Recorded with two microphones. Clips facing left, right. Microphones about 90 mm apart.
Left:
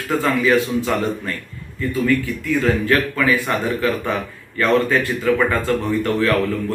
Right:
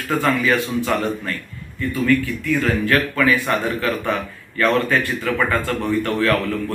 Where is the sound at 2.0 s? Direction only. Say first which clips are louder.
Right 2 dB; 20° left (ahead or behind).